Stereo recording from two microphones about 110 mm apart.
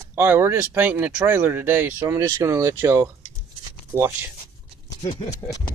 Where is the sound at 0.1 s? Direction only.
20° right (ahead or behind).